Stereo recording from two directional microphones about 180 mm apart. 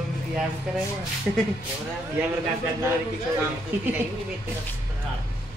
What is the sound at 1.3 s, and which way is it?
Speech, 5° right (ahead or behind).